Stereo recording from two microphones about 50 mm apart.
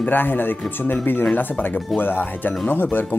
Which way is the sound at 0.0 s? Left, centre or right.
Left.